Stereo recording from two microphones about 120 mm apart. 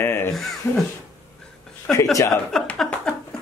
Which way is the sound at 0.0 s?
20° left (ahead or behind).